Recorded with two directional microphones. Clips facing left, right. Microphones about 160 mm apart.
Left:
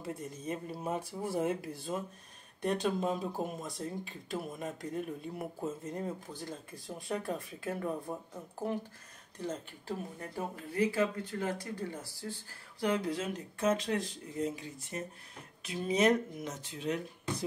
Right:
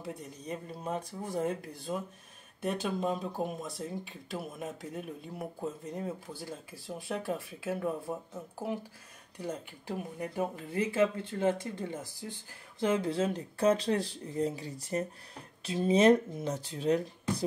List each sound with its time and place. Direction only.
0.0 s speech: centre (ahead or behind)
9.4 s speech: 10° right (ahead or behind); by 17.0 s 35° right (ahead or behind)